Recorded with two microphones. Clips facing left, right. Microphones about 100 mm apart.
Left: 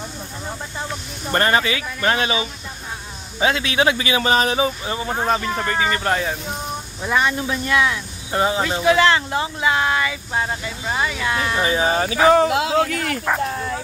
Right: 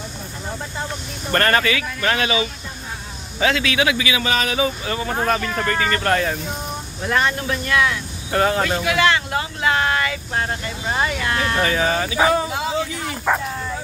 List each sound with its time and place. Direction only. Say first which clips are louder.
1.3 s speech: even; 15° left (ahead or behind); by 11.2 s centre (ahead or behind)
11.2 s speech: even; 10° left (ahead or behind); by 12.2 s 30° left (ahead or behind)
12.4 s speech: left 6 dB; 80° left